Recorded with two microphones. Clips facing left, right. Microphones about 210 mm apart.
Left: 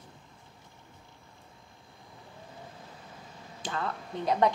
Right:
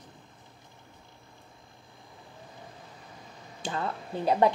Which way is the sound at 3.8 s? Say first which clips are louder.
Right 3 dB; 30° right (ahead or behind).